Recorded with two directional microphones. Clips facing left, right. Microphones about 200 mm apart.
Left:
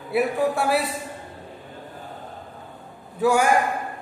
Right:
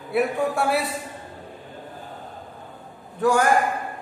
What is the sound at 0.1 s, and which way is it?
Speech, centre (ahead or behind).